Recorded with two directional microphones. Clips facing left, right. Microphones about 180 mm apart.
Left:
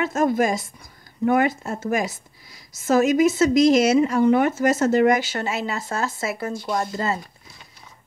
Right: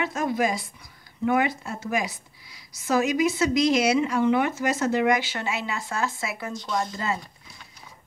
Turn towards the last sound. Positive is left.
turn(degrees=40)  # may be behind; listen again after turning